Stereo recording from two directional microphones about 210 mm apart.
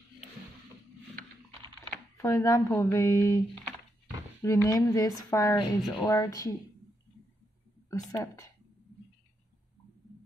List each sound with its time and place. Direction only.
2.1 s speech: 15° left (ahead or behind)
7.9 s speech: 15° left (ahead or behind)